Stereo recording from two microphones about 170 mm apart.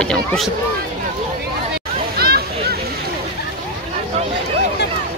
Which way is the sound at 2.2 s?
65° right (ahead or behind).